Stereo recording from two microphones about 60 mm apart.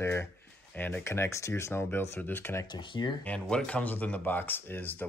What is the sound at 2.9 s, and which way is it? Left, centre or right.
Speech, left.